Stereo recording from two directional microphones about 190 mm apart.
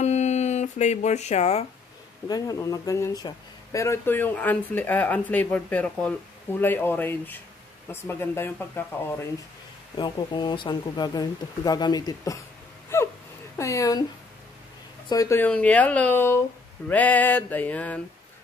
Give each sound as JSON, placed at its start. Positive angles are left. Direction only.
{"t": 0.0, "sound": "music", "side_deg": 35}
{"t": 2.2, "sound": "speech", "side_deg": 20}
{"t": 9.9, "sound": "speech", "side_deg": 25}
{"t": 12.9, "sound": "gasp", "side_deg": 15}
{"t": 13.6, "sound": "speech", "side_deg": 15}
{"t": 15.0, "sound": "speech", "side_deg": 15}